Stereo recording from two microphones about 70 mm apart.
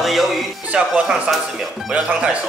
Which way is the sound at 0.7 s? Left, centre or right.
Centre.